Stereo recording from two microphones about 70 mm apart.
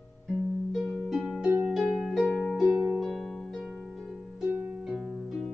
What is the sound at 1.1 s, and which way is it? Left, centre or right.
Harp, centre.